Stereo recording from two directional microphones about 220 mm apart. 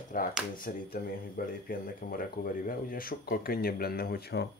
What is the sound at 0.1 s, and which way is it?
Speech, 40° left (ahead or behind).